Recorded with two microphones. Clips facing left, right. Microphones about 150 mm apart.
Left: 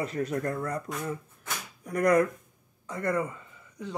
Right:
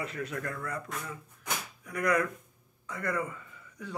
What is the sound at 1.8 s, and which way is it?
Speech, 40° left (ahead or behind).